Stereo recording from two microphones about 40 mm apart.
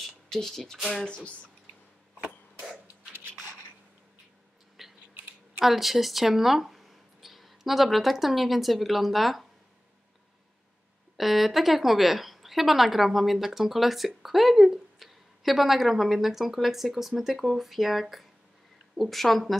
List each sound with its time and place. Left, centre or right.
0.3 s speech: centre
1.0 s speech: left
4.8 s a sound: centre
5.6 s speech: centre
11.1 s a woman's voice: centre